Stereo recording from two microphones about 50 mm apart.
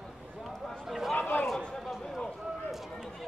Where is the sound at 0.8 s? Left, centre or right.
Centre.